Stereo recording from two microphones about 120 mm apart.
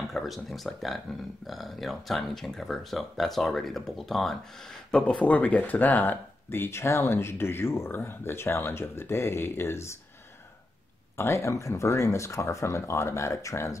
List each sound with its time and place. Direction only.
0.1 s speech: centre (ahead or behind); by 9.9 s 20° left (ahead or behind)
11.1 s speech: 25° left (ahead or behind)